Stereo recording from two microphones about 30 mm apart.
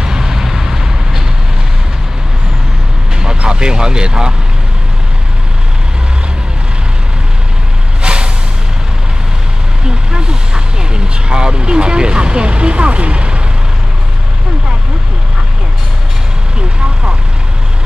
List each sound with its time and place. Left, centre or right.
0.0 s vehicle: right
3.2 s music: right
8.0 s vehicle: right
9.8 s vehicle: right